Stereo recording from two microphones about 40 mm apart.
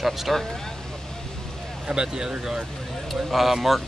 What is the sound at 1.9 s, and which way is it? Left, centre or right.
Speech, right.